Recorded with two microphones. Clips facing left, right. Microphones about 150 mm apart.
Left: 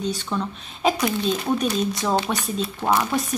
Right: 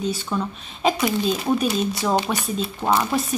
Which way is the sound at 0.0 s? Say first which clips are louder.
Right 1 dB; 5° right (ahead or behind).